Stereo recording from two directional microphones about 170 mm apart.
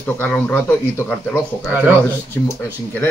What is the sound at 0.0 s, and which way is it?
A man's voice, 10° left (ahead or behind).